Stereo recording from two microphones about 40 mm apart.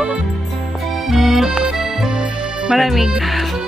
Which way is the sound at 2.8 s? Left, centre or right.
Centre.